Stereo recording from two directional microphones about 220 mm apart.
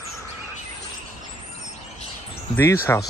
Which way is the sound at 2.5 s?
10° left (ahead or behind).